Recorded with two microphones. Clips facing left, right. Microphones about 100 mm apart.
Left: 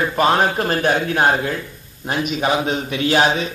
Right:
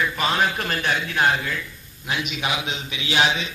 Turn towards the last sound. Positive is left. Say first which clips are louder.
# left 6 dB
turn(degrees=45)  # may be behind; listen again after turning